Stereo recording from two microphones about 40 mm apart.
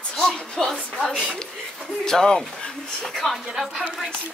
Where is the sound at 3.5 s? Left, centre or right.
Centre.